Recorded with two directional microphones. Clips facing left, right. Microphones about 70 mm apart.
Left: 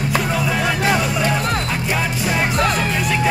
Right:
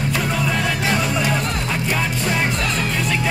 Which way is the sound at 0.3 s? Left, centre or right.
Centre.